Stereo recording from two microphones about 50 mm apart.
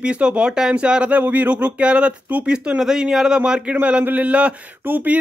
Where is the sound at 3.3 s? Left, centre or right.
Right.